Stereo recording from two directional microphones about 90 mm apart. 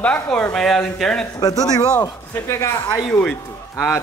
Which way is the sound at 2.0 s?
30° left (ahead or behind).